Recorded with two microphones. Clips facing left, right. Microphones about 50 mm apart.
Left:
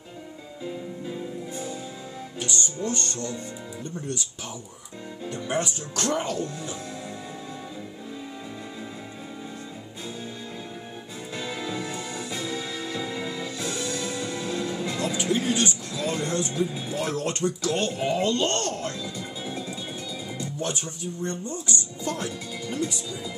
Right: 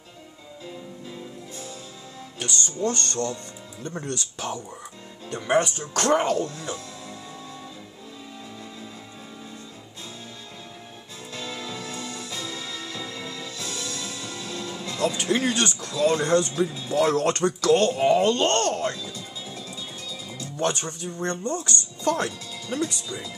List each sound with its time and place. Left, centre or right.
1.5 s music: left
2.3 s music: right
5.3 s speech: right
11.3 s music: left
15.1 s speech: right
16.5 s speech: left
17.0 s speech: right
17.9 s speech: right
18.9 s music: left
20.5 s speech: right